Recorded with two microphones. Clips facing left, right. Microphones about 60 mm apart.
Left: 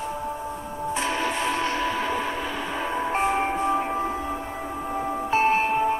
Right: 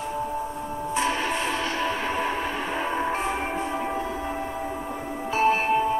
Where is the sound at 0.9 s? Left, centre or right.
Right.